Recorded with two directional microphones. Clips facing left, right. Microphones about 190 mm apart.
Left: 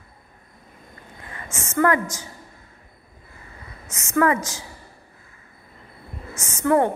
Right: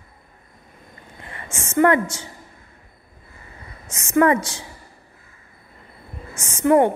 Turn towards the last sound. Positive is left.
turn(degrees=-25)  # may be behind; listen again after turning